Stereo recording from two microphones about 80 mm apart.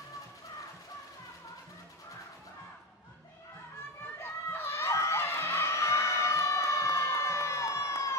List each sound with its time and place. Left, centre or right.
4.2 s music: left